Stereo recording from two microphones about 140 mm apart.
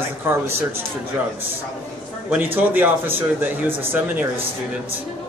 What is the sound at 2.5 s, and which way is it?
Speech, 10° right (ahead or behind).